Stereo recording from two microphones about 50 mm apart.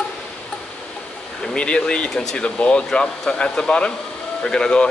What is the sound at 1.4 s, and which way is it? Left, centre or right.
Speech, centre.